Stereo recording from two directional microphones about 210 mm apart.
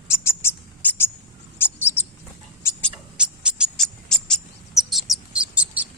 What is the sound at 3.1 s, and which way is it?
Bird, 5° right (ahead or behind).